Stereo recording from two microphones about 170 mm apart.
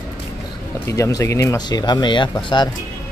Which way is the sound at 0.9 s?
20° left (ahead or behind).